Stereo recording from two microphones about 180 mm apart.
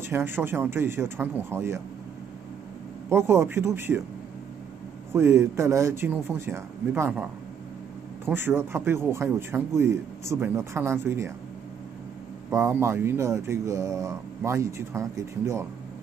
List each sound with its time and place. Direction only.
0.1 s speech: 10° right (ahead or behind)
3.1 s speech: 15° right (ahead or behind)
5.1 s speech: 15° right (ahead or behind)
8.4 s speech: 15° right (ahead or behind)
12.4 s speech: 15° right (ahead or behind)